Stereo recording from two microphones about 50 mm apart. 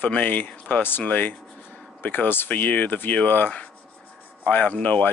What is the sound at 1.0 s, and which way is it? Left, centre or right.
Speech, left.